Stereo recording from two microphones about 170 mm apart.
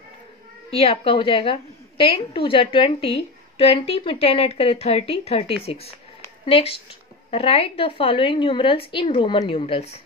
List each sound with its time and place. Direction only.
0.7 s a woman's voice: 35° left (ahead or behind)